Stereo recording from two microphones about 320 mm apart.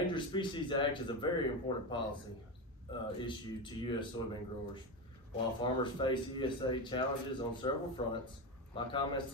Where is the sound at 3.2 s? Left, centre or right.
Centre.